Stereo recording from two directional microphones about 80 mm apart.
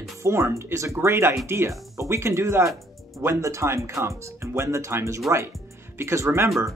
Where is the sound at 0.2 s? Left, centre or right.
Right.